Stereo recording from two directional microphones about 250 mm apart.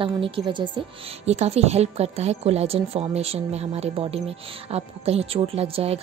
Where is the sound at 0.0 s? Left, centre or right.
Centre.